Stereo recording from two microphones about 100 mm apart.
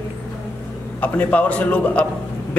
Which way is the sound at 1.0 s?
15° left (ahead or behind).